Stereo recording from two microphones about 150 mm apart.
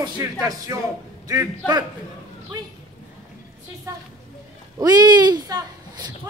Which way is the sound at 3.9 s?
20° right (ahead or behind).